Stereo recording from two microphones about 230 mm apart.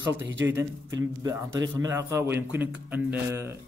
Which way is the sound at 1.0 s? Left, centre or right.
Centre.